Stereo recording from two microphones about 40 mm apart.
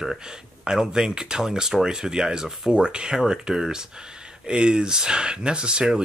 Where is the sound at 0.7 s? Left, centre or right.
Centre.